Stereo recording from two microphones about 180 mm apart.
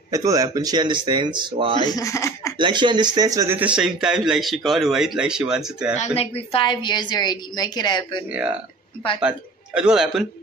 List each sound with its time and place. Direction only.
0.1 s speech: 20° right (ahead or behind)
1.9 s speech: 20° left (ahead or behind)
2.6 s speech: 25° right (ahead or behind); by 5.9 s 5° right (ahead or behind)
5.9 s a woman's voice: 35° left (ahead or behind)
8.3 s speech: 10° right (ahead or behind)
9.8 s speech: 5° right (ahead or behind)